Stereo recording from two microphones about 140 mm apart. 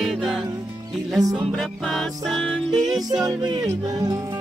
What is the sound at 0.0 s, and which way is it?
Music, centre (ahead or behind).